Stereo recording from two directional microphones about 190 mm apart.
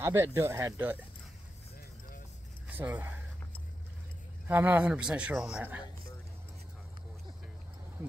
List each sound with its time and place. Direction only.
0.0 s speech: 15° right (ahead or behind)
2.7 s speech: 10° right (ahead or behind)
4.5 s speech: 10° right (ahead or behind)